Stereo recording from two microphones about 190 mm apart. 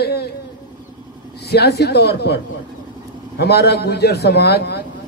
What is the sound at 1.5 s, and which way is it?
A man's voice, 60° left (ahead or behind).